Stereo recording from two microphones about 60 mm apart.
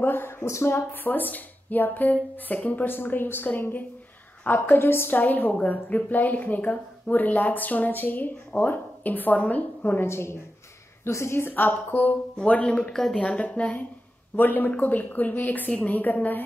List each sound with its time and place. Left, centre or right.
0.0 s a woman's voice: left
0.5 s speech: left
0.9 s a woman's voice: left
4.6 s a woman's voice: left
10.0 s a woman's voice: left
12.7 s speech: centre
13.2 s speech: centre
14.3 s speech: left